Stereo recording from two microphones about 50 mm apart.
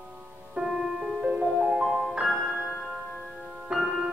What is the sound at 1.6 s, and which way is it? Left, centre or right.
Music, centre.